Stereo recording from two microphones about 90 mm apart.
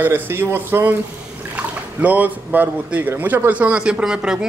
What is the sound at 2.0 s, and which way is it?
A man's voice, 20° right (ahead or behind).